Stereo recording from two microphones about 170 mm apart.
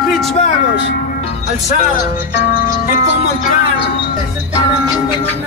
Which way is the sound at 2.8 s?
55° left (ahead or behind).